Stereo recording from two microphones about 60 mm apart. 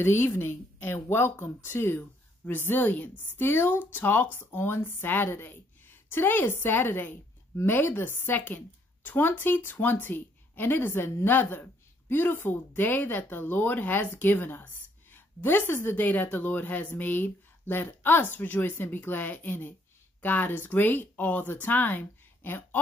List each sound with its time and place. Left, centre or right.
0.0 s a woman's voice: left